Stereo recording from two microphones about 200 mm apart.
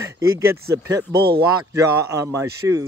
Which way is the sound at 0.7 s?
15° right (ahead or behind).